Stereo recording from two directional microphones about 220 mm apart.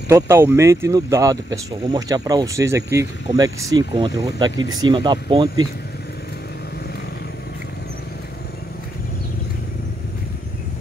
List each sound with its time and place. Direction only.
0.1 s speech: 10° right (ahead or behind)